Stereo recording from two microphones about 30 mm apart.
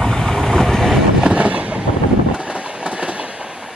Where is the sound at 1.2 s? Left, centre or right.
Right.